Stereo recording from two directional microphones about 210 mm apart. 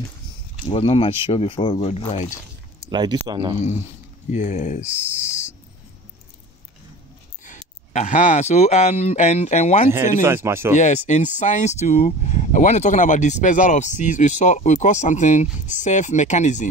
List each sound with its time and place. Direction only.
0.7 s speech: 25° left (ahead or behind)
2.9 s speech: 20° right (ahead or behind)
4.3 s speech: 35° left (ahead or behind)
4.8 s speech: 10° right (ahead or behind)
7.4 s speech: 35° left (ahead or behind)
9.8 s speech: 10° right (ahead or behind)
10.8 s speech: 35° left (ahead or behind)